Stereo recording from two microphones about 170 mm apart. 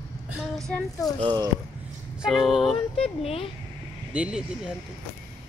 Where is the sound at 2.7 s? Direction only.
35° left (ahead or behind).